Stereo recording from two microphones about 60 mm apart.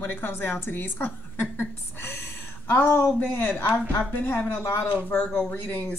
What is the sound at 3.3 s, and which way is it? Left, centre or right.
Speech, left.